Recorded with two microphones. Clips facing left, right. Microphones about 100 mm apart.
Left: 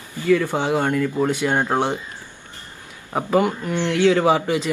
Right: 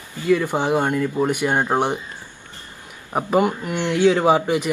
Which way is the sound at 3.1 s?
20° right (ahead or behind).